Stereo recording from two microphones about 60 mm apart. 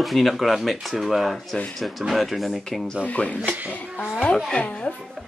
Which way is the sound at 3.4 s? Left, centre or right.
Right.